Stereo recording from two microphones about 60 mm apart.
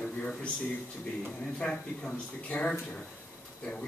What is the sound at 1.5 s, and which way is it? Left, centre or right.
Speech, centre.